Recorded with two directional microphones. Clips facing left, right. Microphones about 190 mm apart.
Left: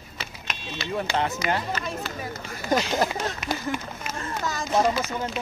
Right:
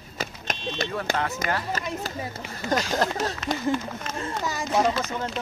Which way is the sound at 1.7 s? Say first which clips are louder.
Even; 40° right (ahead or behind).